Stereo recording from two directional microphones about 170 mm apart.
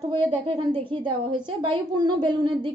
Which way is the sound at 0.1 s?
30° right (ahead or behind).